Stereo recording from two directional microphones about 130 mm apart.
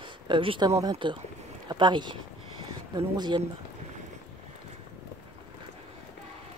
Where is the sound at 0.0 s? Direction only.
40° right (ahead or behind).